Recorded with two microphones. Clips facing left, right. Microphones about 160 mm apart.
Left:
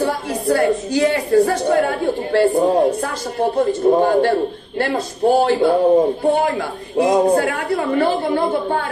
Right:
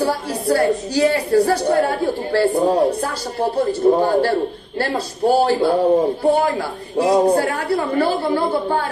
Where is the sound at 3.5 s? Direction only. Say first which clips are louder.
Even; 35° right (ahead or behind).